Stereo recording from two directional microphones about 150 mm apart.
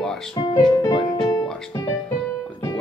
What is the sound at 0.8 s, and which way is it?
Music, 25° left (ahead or behind).